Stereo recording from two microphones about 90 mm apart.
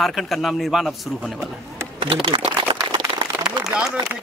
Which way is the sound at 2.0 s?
90° right.